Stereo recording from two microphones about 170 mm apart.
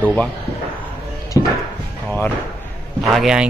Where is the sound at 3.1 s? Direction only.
5° right (ahead or behind).